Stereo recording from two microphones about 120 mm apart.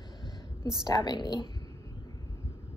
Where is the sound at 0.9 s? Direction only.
35° left (ahead or behind).